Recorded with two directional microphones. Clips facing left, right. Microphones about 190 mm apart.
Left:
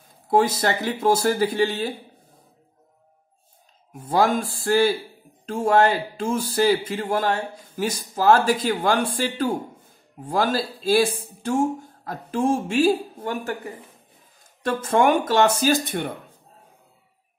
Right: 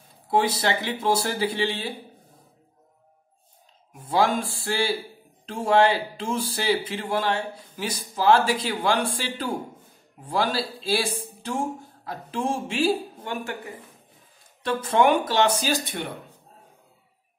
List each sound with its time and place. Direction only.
0.3 s speech: 45° left (ahead or behind)
3.9 s speech: 45° left (ahead or behind)
12.1 s speech: 45° left (ahead or behind)
14.6 s speech: 45° left (ahead or behind)